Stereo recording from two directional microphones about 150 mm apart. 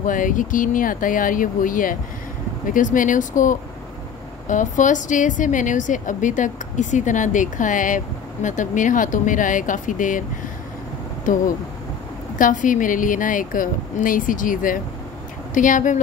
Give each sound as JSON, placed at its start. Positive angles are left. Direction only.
{"t": 0.0, "sound": "a woman's voice", "side_deg": 60}
{"t": 11.3, "sound": "a woman's voice", "side_deg": 60}